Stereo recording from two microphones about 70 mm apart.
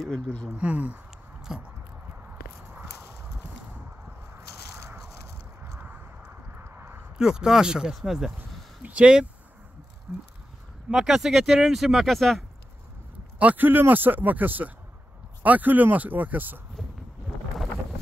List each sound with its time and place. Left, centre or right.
0.5 s speech: centre
1.5 s speech: centre
4.4 s biting: right
5.8 s a sound: right
6.2 s clip-clop: right
7.2 s speech: centre
8.8 s speech: centre
13.4 s speech: right